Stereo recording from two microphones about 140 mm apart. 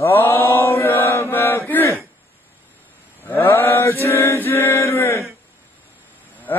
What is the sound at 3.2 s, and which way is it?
Mantra, 15° left (ahead or behind).